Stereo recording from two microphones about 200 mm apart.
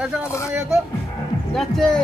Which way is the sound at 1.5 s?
Centre (ahead or behind).